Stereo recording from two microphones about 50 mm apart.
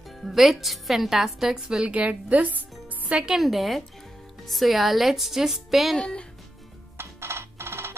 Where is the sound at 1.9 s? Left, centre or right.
Right.